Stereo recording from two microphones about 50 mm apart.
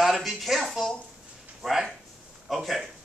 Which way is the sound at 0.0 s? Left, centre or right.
Centre.